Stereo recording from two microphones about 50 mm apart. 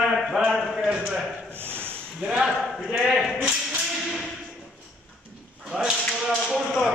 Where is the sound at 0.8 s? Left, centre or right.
Centre.